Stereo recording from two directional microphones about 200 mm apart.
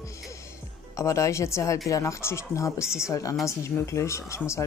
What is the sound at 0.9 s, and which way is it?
Speech, 15° left (ahead or behind).